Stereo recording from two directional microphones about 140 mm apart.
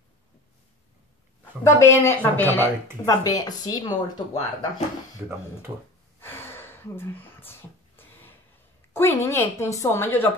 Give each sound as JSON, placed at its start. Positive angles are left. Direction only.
{"t": 1.6, "sound": "a woman's voice", "side_deg": 20}
{"t": 3.1, "sound": "speech", "side_deg": 25}
{"t": 5.7, "sound": "speech", "side_deg": -25}
{"t": 6.2, "sound": "a sound", "side_deg": 15}
{"t": 8.9, "sound": "a woman's voice", "side_deg": 15}